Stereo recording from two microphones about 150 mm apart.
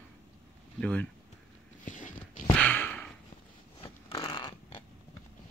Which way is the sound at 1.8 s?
55° left (ahead or behind).